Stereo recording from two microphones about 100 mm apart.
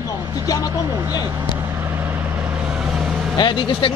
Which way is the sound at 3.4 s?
55° left (ahead or behind).